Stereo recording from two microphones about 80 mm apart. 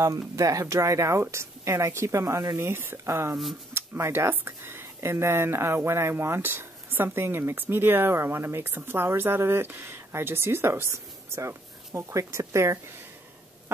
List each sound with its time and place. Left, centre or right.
0.0 s speech: right